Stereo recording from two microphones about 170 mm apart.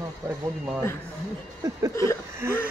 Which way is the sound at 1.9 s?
15° left (ahead or behind).